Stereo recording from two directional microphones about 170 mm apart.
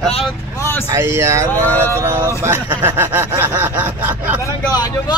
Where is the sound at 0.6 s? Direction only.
15° left (ahead or behind).